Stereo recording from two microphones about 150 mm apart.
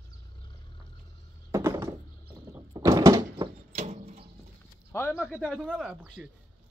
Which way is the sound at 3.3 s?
45° right (ahead or behind).